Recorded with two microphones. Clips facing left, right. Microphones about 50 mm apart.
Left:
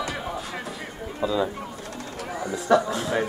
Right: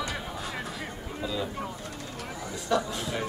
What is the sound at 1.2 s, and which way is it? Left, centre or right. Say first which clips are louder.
Speech: left 8 dB; centre.